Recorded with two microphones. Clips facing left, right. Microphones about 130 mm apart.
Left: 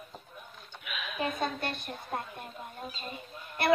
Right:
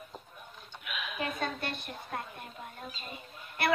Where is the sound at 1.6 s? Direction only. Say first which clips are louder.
Left 2 dB; 40° left (ahead or behind).